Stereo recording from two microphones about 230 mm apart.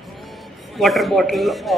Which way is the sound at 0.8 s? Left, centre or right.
Centre.